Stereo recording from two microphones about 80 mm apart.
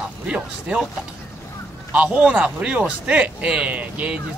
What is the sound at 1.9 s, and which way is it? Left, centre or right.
A man's voice, centre.